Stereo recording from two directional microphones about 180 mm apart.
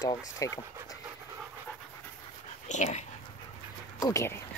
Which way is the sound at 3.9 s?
20° left (ahead or behind).